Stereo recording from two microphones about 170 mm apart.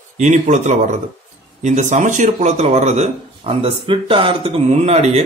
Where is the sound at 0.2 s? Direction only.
45° right (ahead or behind).